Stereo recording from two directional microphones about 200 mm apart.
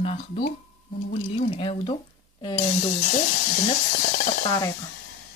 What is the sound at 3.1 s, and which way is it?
Speech, 45° left (ahead or behind).